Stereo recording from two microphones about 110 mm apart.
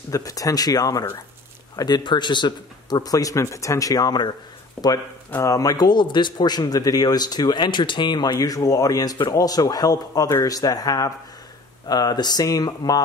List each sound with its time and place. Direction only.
0.1 s speech: 30° left (ahead or behind)
4.8 s speech: 10° left (ahead or behind)
5.4 s speech: 30° left (ahead or behind)